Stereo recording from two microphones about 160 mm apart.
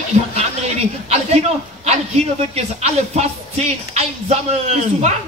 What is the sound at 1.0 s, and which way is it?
A man's voice, 40° right (ahead or behind).